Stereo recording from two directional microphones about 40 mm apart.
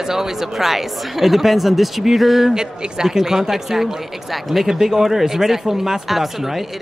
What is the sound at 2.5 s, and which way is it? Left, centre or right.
A woman's voice, centre.